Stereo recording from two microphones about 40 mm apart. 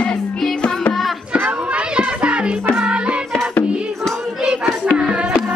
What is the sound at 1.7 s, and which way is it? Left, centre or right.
Music, right.